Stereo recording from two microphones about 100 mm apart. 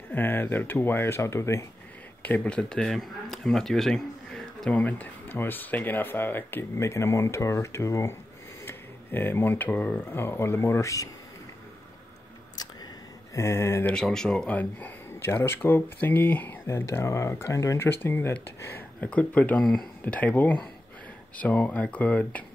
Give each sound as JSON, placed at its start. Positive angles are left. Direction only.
{"t": 0.1, "sound": "speech", "side_deg": 20}
{"t": 2.2, "sound": "speech", "side_deg": 15}
{"t": 13.3, "sound": "speech", "side_deg": 25}
{"t": 13.8, "sound": "speech", "side_deg": 5}
{"t": 20.2, "sound": "speech", "side_deg": 15}